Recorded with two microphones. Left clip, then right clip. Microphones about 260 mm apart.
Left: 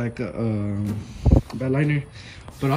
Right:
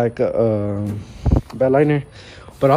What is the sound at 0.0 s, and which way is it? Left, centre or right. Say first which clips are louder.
Speech: right 12 dB; centre.